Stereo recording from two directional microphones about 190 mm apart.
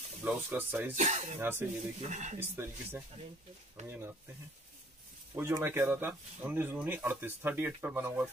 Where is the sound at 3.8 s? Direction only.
15° right (ahead or behind).